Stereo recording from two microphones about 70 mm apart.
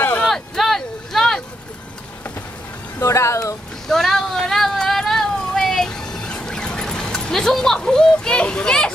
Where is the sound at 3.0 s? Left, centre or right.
Left.